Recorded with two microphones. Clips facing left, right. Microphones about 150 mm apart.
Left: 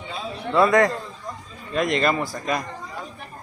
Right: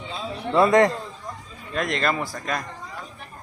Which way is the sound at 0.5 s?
25° right (ahead or behind).